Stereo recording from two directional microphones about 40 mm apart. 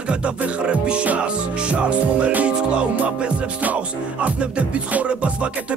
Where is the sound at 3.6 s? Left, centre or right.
Right.